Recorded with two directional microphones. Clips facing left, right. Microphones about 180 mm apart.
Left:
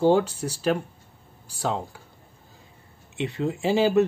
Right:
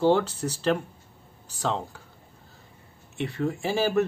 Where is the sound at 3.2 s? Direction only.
20° left (ahead or behind).